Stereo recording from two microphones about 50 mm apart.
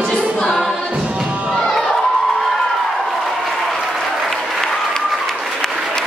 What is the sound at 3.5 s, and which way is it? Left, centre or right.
Applause, centre.